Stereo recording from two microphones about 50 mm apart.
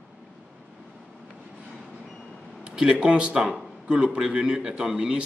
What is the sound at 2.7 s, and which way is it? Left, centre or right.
A man's voice, centre.